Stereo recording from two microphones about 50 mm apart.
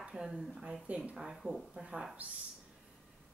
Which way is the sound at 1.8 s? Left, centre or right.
Centre.